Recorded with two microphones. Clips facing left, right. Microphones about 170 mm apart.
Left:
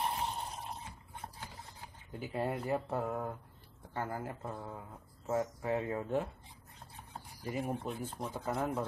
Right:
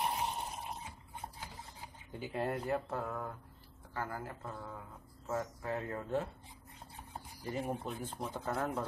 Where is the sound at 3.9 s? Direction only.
20° left (ahead or behind).